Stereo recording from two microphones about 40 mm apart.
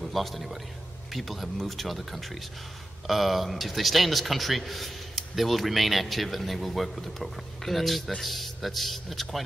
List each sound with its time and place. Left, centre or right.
0.0 s a man's voice: centre